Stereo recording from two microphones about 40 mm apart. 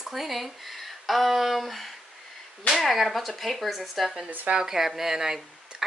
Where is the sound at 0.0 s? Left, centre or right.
Centre.